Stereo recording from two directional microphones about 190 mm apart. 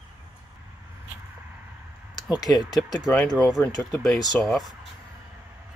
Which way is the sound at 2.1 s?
20° left (ahead or behind).